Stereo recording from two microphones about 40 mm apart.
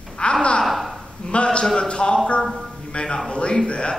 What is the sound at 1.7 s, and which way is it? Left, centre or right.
Speech, left.